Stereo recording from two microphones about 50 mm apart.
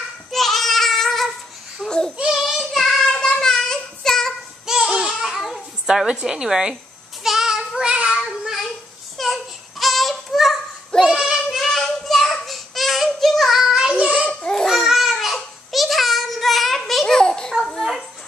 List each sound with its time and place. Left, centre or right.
0.3 s a sound: centre
2.3 s child singing: centre
3.2 s a sound: centre
4.6 s babbling: centre
5.3 s babbling: centre
5.9 s a woman's voice: centre
7.2 s child singing: centre
9.1 s child singing: centre
11.5 s child singing: centre
14.5 s babbling: centre
14.8 s a sound: centre
17.5 s a sound: centre